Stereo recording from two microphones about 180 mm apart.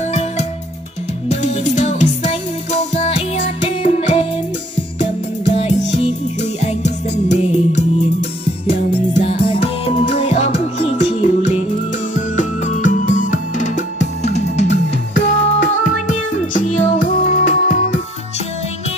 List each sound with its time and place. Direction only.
0.1 s music: 40° left (ahead or behind)
5.6 s music: 40° left (ahead or behind)